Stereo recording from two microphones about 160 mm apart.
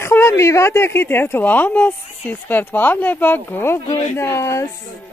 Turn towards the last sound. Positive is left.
turn(degrees=20)  # may be behind; listen again after turning